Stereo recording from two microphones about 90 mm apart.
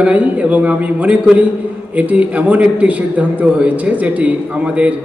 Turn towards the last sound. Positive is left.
turn(degrees=-15)  # may be behind; listen again after turning